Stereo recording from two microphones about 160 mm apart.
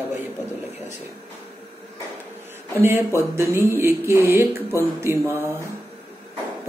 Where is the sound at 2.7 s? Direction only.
15° right (ahead or behind).